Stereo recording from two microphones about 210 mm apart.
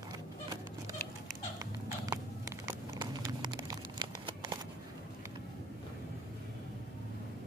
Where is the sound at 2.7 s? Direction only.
20° right (ahead or behind).